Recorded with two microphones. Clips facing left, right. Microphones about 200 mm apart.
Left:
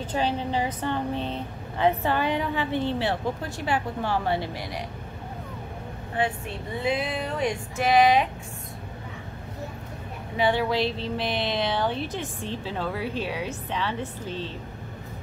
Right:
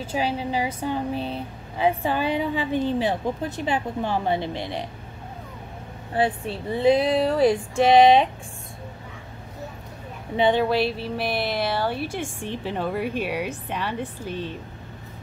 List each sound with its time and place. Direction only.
0.0 s speech: 10° right (ahead or behind); by 4.8 s 25° right (ahead or behind)
6.1 s speech: 35° right (ahead or behind)
10.3 s speech: 20° right (ahead or behind)